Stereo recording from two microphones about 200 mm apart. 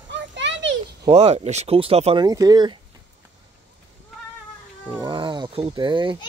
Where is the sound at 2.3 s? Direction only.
20° right (ahead or behind).